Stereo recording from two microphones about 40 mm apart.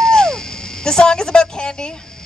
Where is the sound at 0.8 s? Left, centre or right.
Centre.